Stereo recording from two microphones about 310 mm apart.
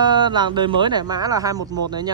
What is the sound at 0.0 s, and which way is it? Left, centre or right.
A man's voice, centre.